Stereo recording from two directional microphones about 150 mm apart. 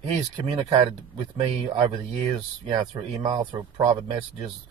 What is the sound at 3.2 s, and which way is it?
Speech, 30° right (ahead or behind).